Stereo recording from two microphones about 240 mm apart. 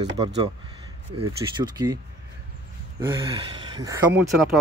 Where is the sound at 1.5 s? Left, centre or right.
Centre.